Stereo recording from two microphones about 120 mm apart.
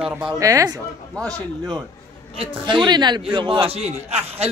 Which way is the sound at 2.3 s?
40° right (ahead or behind).